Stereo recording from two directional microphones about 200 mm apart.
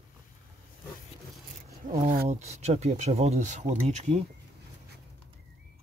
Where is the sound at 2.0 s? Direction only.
45° right (ahead or behind).